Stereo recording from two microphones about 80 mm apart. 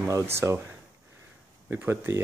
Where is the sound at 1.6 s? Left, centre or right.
Right.